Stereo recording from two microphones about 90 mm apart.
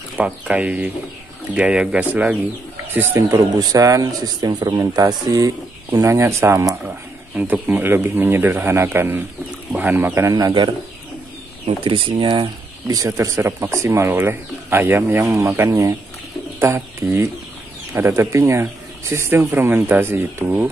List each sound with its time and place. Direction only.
0.2 s speech: 15° right (ahead or behind)
2.9 s speech: 25° right (ahead or behind)
3.3 s speech: 40° right (ahead or behind)
7.3 s speech: 20° right (ahead or behind)
10.3 s speech: 55° right (ahead or behind)
11.6 s speech: 90° right
12.8 s speech: 40° right (ahead or behind); by 20.6 s 25° right (ahead or behind)